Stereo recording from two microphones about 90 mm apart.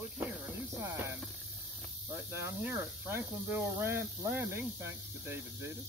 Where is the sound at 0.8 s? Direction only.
25° right (ahead or behind).